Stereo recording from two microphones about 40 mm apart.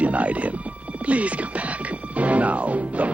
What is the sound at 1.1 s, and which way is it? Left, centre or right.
Music, right.